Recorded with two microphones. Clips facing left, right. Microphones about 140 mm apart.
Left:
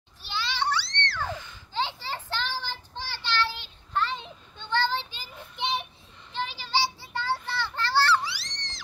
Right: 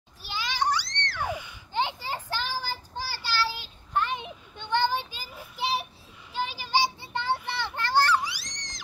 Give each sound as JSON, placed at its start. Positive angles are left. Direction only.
{"t": 0.2, "sound": "children playing", "side_deg": -10}
{"t": 3.9, "sound": "child singing", "side_deg": -15}
{"t": 7.0, "sound": "children playing", "side_deg": -20}
{"t": 8.5, "sound": "music", "side_deg": -15}